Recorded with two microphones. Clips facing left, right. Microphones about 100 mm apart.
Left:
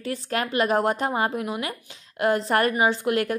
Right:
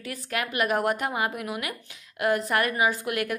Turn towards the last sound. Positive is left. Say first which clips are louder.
# left 4 dB
turn(degrees=30)  # may be behind; listen again after turning